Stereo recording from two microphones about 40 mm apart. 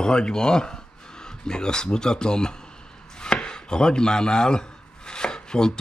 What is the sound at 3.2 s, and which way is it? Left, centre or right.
Chopping, left.